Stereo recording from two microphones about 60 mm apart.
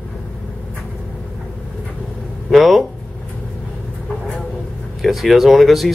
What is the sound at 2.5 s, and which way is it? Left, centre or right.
Speech, centre.